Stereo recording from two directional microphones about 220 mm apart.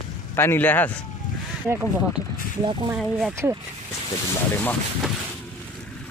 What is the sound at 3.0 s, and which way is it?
Speech, centre (ahead or behind).